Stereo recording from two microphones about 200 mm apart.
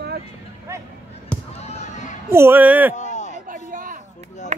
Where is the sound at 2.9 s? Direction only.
35° left (ahead or behind).